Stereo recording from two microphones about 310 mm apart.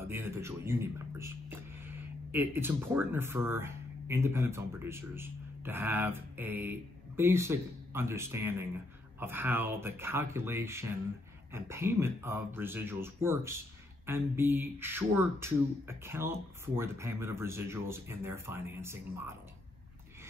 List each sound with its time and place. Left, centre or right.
0.0 s speech: centre